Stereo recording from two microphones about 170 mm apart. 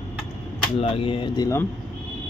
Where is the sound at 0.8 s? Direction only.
35° left (ahead or behind).